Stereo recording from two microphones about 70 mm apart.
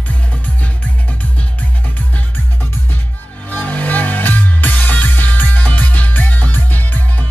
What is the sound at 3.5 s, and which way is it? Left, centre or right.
Music, left.